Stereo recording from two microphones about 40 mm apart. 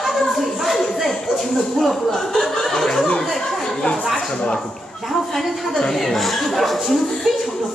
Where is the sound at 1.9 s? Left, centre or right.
Centre.